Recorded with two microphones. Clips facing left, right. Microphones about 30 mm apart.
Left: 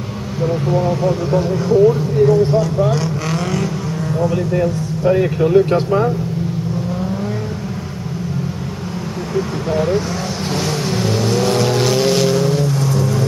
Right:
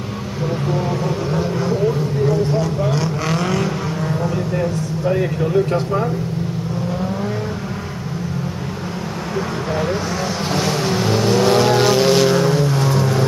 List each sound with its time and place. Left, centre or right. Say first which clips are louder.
0.4 s speech: left 4 dB; centre
4.3 s speech: left 3 dB; centre
9.3 s speech: left 3 dB; centre
10.5 s vehicle: right 1 dB; centre
12.7 s music: even; right